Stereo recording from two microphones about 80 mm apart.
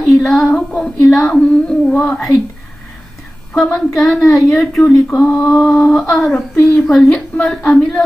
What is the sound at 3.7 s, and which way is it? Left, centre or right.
Speech, left.